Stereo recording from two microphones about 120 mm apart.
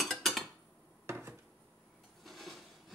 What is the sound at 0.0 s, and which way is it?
Dishes, centre (ahead or behind).